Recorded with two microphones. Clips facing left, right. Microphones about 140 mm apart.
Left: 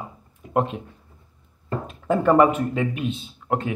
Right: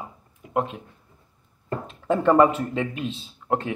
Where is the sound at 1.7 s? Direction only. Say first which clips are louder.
Left 1 dB; 25° right (ahead or behind).